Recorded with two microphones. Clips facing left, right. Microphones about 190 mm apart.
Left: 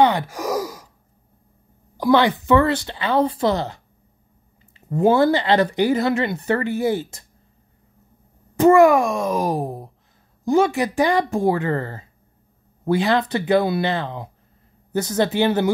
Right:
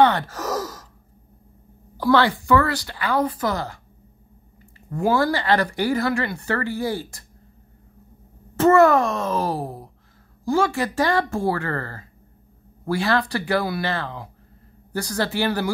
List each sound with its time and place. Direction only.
0.0 s sigh: 15° left (ahead or behind)
2.0 s speech: 15° left (ahead or behind)
8.5 s a child's voice: 15° left (ahead or behind)